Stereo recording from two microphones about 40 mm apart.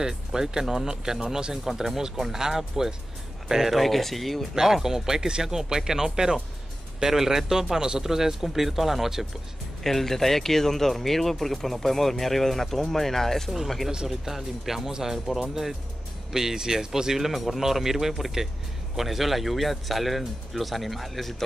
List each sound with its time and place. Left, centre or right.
0.0 s speech: centre
3.7 s speech: centre
4.6 s speech: centre
9.8 s speech: centre
14.0 s speech: centre
14.9 s speech: centre
16.3 s speech: centre